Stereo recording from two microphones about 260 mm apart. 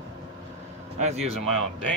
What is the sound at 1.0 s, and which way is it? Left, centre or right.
Speech, right.